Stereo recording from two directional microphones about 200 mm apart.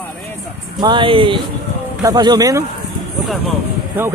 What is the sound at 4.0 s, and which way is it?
Speech, 10° right (ahead or behind).